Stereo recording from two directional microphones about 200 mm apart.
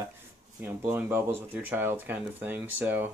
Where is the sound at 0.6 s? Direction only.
10° right (ahead or behind).